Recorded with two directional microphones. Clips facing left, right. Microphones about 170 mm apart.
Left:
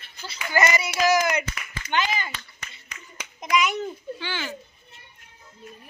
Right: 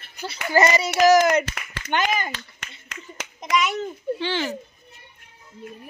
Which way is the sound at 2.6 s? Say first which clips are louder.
Right 4 dB; 80° right.